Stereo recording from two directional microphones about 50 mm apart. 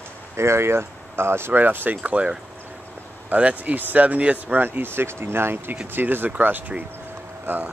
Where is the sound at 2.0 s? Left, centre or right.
Right.